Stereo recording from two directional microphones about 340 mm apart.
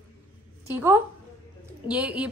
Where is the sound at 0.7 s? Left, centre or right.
Centre.